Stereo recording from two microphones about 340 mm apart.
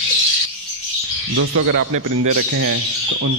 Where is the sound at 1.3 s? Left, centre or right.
Right.